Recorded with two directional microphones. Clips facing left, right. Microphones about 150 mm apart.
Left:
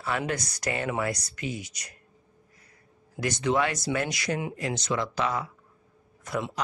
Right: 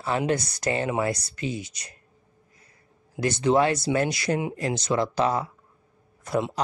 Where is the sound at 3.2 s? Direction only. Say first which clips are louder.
Right 5 dB; 30° right (ahead or behind).